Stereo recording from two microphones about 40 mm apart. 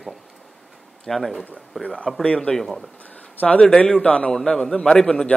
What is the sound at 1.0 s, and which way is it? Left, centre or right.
A man's voice, centre.